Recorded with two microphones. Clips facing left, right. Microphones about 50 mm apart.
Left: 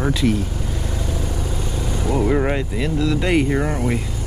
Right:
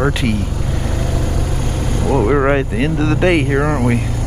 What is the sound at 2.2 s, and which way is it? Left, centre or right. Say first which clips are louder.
Speech: right 6 dB; right.